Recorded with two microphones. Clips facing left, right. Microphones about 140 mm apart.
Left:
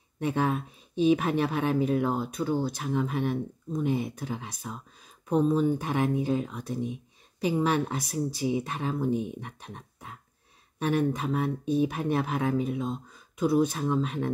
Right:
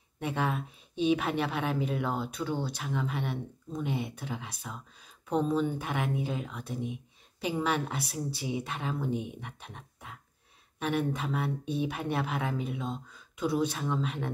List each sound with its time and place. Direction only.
0.2 s speech: 40° left (ahead or behind)